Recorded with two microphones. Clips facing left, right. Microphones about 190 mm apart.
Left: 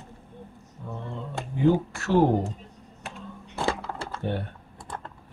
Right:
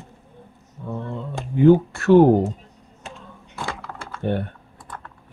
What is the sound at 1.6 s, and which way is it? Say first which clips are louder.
Speech: right 8 dB; 60° right (ahead or behind).